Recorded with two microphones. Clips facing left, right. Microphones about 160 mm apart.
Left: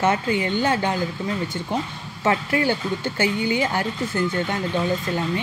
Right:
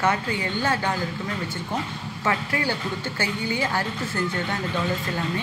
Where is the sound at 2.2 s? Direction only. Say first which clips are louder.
Left 5 dB; 25° left (ahead or behind).